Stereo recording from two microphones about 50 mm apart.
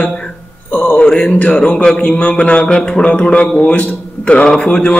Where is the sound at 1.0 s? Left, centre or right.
Centre.